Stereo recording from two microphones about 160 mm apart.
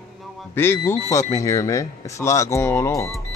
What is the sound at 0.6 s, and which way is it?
Speech, 15° left (ahead or behind).